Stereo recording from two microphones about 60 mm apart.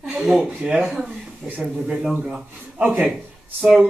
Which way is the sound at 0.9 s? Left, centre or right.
Centre.